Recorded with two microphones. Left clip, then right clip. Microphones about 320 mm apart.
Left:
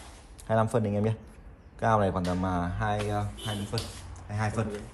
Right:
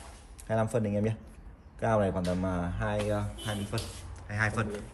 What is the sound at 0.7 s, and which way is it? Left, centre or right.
Speech, left.